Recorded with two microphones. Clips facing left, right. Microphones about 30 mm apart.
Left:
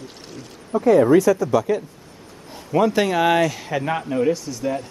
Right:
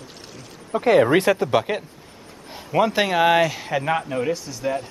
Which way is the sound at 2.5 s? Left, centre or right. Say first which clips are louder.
Left 1 dB; centre.